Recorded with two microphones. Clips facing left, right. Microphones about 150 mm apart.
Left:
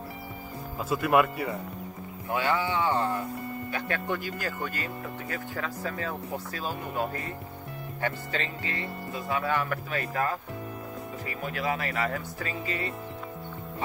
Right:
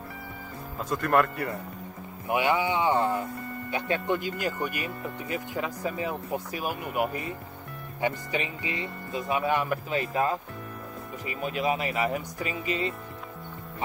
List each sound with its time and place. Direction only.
0.7 s speech: 5° left (ahead or behind)
2.2 s speech: 15° right (ahead or behind)